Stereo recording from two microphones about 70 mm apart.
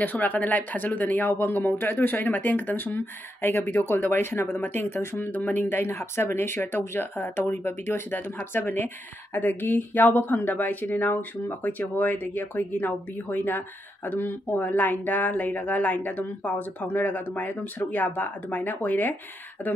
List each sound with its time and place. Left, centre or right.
0.0 s speech: left